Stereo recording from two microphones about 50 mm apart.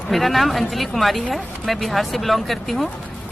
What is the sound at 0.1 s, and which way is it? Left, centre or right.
A woman's voice, centre.